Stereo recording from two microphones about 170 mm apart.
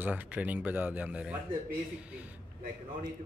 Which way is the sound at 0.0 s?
10° right (ahead or behind).